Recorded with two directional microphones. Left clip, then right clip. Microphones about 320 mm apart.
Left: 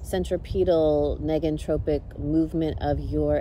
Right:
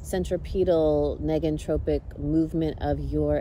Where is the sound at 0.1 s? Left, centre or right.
Centre.